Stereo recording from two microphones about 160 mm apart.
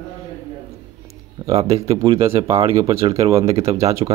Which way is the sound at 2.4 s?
25° right (ahead or behind).